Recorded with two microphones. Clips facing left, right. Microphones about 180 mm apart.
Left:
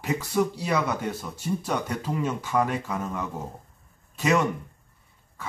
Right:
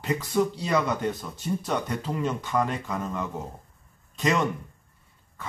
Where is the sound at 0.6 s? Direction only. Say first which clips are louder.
Right 1 dB; 10° left (ahead or behind).